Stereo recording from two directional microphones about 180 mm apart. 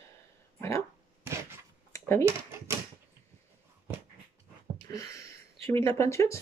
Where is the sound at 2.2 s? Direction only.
15° right (ahead or behind).